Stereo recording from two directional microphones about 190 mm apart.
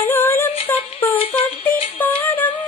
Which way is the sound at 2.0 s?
10° left (ahead or behind).